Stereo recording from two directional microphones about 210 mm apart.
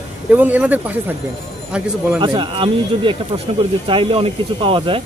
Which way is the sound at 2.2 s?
25° right (ahead or behind).